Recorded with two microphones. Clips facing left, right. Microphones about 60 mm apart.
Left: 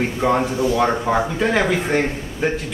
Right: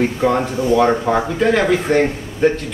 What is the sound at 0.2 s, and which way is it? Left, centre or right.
Speech, centre.